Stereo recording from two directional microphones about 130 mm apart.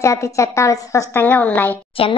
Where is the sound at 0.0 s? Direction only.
25° left (ahead or behind).